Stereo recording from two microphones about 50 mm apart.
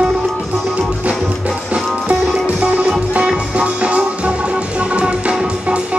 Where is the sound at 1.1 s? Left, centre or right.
Centre.